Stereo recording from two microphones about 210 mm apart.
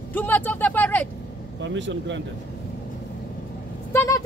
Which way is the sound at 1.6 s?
60° right (ahead or behind).